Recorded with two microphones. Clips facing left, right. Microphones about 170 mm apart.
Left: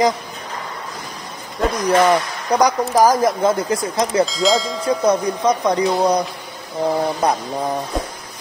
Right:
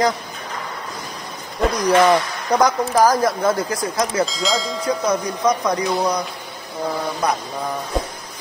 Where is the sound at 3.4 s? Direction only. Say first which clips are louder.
Left 2 dB; 25° left (ahead or behind).